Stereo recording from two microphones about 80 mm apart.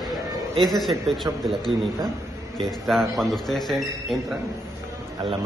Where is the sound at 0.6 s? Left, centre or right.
Centre.